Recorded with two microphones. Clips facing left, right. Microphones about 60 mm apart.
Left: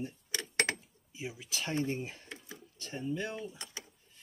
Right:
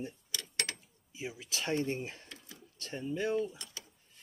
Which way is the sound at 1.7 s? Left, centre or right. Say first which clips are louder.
Right 1 dB; centre.